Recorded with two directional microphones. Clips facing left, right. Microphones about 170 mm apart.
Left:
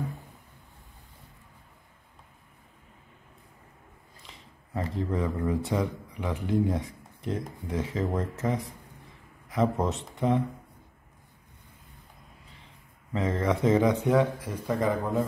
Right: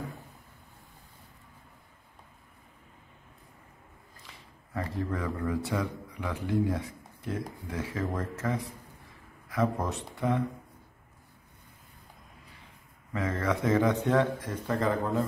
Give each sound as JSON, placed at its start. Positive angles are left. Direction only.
{"t": 4.3, "sound": "speech", "side_deg": 25}
{"t": 13.1, "sound": "speech", "side_deg": 20}